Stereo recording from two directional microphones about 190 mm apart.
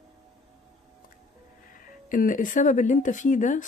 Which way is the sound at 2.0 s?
45° left (ahead or behind).